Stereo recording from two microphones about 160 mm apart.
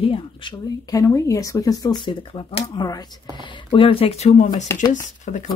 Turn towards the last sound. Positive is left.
turn(degrees=50)  # may be behind; listen again after turning